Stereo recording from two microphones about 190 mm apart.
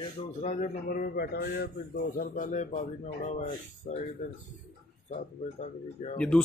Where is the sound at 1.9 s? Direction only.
50° left (ahead or behind).